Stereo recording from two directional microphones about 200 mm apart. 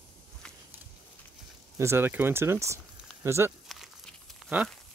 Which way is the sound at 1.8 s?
10° right (ahead or behind).